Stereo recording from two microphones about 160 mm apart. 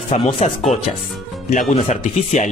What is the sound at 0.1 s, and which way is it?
Speech, 40° left (ahead or behind).